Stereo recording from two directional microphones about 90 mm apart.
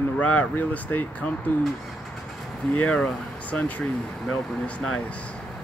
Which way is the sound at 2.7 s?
10° left (ahead or behind).